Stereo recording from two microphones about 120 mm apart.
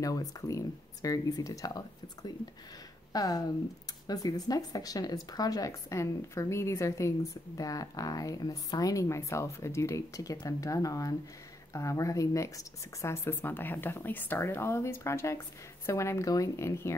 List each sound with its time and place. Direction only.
0.0 s speech: 30° left (ahead or behind)